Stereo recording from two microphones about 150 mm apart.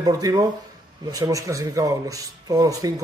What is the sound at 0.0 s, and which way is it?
A man's voice, 25° right (ahead or behind).